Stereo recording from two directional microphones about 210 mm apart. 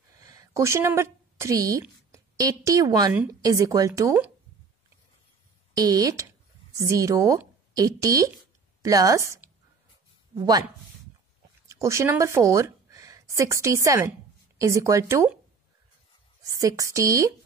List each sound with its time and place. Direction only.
0.3 s a sound: 15° right (ahead or behind)
1.7 s a woman's voice: 15° right (ahead or behind)
5.8 s speech: 15° right (ahead or behind)
11.6 s a woman's voice: 15° right (ahead or behind)
16.5 s a woman's voice: 15° right (ahead or behind)